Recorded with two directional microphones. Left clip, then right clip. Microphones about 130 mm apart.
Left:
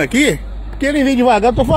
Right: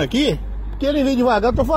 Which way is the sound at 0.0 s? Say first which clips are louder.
Left 5 dB; 20° left (ahead or behind).